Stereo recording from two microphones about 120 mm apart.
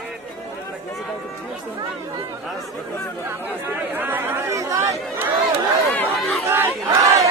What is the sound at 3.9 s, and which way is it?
Speech, 15° right (ahead or behind).